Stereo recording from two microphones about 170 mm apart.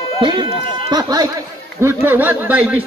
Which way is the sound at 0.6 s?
55° left (ahead or behind).